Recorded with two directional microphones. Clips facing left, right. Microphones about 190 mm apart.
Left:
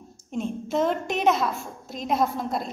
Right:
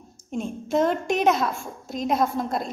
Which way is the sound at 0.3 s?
Centre (ahead or behind).